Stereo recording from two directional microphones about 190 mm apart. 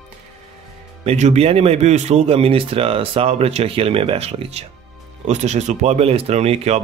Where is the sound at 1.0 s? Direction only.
35° right (ahead or behind).